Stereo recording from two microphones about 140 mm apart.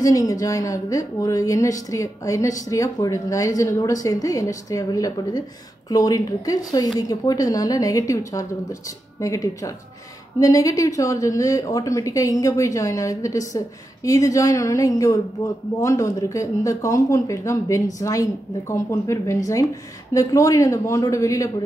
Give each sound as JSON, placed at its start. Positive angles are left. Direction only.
{"t": 0.0, "sound": "speech", "side_deg": 25}